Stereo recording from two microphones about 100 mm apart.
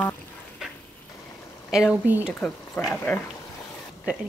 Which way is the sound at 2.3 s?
15° left (ahead or behind).